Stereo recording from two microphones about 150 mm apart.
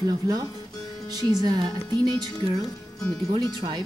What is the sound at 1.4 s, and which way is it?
Speech, 30° right (ahead or behind).